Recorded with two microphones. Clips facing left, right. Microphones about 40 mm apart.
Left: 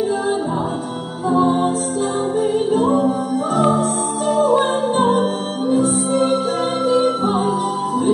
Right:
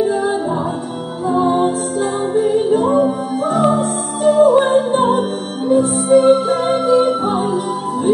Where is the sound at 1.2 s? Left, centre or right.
Centre.